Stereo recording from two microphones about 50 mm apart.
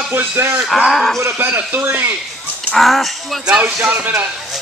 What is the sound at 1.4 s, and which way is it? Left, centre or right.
Speech, right.